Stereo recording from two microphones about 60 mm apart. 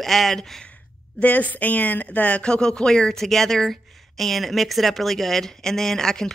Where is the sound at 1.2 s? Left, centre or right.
Left.